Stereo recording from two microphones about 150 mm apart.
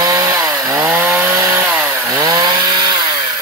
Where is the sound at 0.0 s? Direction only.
20° right (ahead or behind).